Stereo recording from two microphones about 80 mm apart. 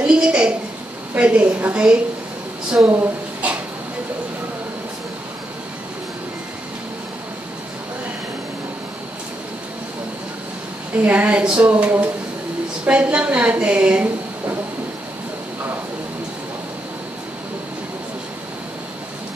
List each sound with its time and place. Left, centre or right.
0.0 s a sound: centre
1.1 s a woman's voice: centre
11.1 s a woman's voice: centre